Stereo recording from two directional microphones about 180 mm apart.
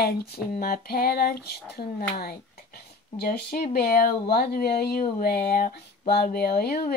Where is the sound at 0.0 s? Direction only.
55° left (ahead or behind).